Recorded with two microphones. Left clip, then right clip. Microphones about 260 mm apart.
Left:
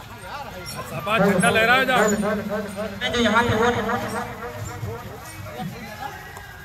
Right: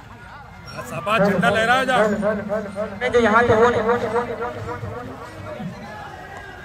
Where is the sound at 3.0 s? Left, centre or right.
Centre.